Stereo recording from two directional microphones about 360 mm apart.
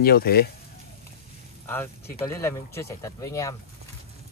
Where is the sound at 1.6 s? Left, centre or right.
Centre.